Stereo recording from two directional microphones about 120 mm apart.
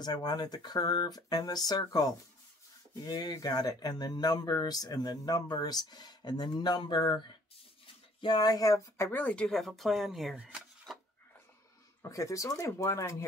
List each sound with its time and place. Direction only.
0.0 s speech: 35° left (ahead or behind); by 11.0 s 5° right (ahead or behind)
12.0 s speech: 25° left (ahead or behind)